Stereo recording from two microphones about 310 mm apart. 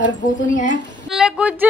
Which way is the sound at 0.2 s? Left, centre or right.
Left.